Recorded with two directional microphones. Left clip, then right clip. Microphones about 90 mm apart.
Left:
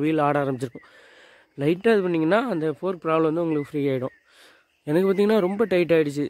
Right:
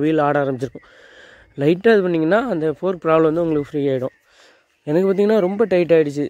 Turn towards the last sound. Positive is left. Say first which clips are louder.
# right 5 dB
turn(degrees=-5)  # may be behind; listen again after turning